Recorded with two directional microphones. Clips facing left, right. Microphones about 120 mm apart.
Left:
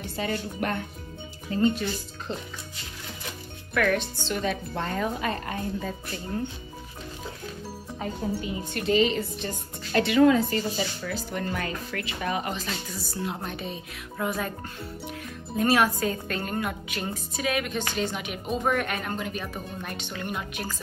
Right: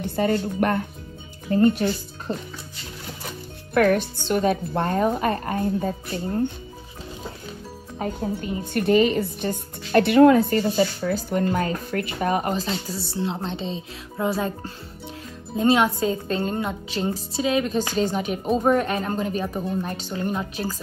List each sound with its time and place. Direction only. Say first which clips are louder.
0.0 s music: right 8 dB; 55° right (ahead or behind)
1.5 s speech: right 6 dB; 55° right (ahead or behind)
3.7 s speech: right 6 dB; 45° right (ahead or behind)
8.0 s speech: right 3 dB; 45° right (ahead or behind); by 11.8 s 30° right (ahead or behind)
11.9 s speech: right 6 dB; 45° right (ahead or behind)
12.6 s a woman's voice: right 6 dB; 30° right (ahead or behind)